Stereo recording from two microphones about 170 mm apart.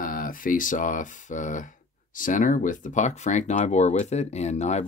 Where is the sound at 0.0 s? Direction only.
55° left (ahead or behind).